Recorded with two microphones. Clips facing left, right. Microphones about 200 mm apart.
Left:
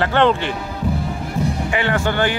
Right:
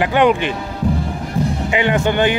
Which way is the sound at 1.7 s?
20° right (ahead or behind).